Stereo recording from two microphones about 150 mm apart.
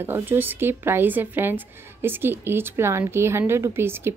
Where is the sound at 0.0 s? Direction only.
15° right (ahead or behind).